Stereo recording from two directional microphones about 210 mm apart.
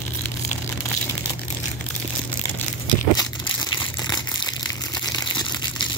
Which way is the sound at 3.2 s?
20° left (ahead or behind).